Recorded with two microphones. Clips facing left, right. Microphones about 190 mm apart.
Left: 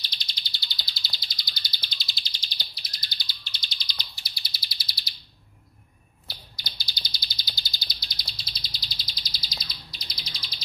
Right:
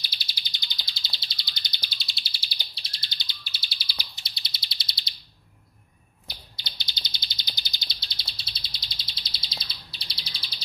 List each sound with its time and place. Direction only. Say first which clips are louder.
0.0 s bird: even; 5° right (ahead or behind)
1.9 s bird: even; centre (ahead or behind)
2.7 s bird: even; 30° right (ahead or behind)
3.4 s bird: left 1 dB; 5° right (ahead or behind)
4.2 s bird: even; 25° right (ahead or behind)
6.2 s bird: even; 25° right (ahead or behind)